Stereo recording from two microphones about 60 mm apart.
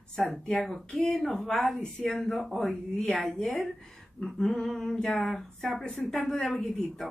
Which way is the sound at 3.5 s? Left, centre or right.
Centre.